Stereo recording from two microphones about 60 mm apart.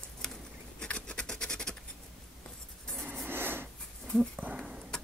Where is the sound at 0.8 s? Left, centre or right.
Centre.